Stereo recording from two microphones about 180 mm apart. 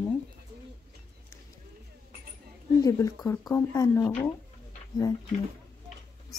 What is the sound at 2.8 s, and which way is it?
Speech, 20° left (ahead or behind).